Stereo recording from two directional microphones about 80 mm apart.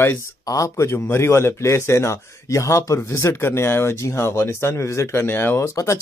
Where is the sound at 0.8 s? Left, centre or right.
Left.